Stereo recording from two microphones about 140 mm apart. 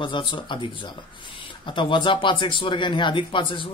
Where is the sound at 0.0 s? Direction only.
35° left (ahead or behind).